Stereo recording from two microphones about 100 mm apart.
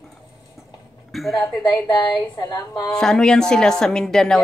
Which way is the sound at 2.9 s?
5° left (ahead or behind).